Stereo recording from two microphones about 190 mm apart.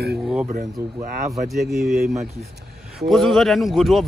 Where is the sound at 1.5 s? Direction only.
Centre (ahead or behind).